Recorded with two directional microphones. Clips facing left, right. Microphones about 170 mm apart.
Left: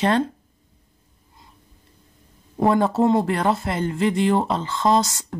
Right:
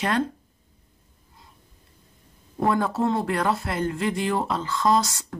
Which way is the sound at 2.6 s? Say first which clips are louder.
Left 5 dB; 25° left (ahead or behind).